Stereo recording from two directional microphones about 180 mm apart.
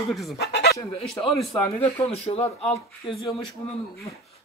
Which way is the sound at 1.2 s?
20° left (ahead or behind).